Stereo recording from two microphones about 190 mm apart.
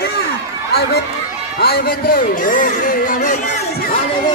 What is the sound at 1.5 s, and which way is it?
A man's voice, 55° left (ahead or behind).